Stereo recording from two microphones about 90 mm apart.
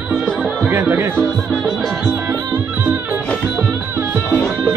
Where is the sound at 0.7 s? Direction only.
25° right (ahead or behind).